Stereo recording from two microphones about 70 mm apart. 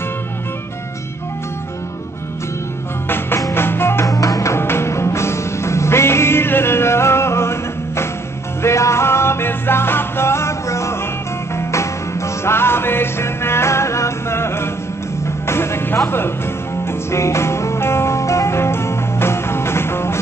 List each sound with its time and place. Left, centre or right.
3.5 s music: left
4.1 s music: left
16.1 s speech: left
16.8 s music: left